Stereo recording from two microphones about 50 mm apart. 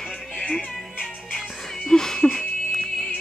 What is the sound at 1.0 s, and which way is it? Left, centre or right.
Music, left.